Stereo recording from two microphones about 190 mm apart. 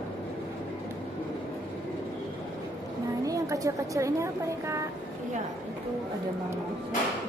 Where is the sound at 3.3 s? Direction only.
15° right (ahead or behind).